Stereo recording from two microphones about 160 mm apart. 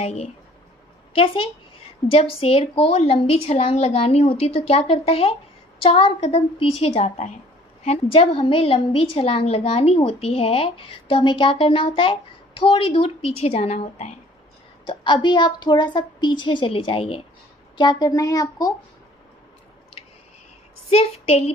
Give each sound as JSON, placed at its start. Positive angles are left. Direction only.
{"t": 0.0, "sound": "a woman's voice", "side_deg": 40}
{"t": 14.9, "sound": "a woman's voice", "side_deg": 30}
{"t": 20.9, "sound": "a woman's voice", "side_deg": 40}